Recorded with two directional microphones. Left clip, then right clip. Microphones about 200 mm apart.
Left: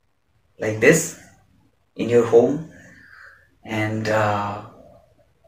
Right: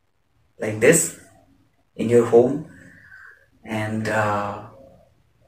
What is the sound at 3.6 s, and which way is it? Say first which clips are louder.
Speech: left 2 dB; 10° left (ahead or behind).